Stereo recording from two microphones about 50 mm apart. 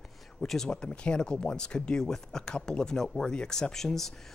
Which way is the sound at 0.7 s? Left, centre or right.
Centre.